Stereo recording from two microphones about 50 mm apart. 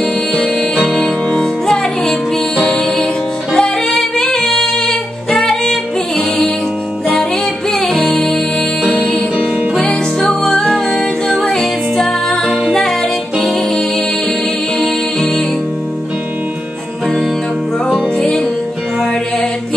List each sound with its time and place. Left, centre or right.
0.0 s music: centre
0.9 s music: left
1.4 s music: centre
3.5 s music: centre
7.7 s music: centre
10.1 s music: centre